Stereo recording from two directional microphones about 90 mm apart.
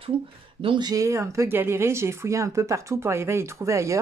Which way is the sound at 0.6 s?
70° right (ahead or behind).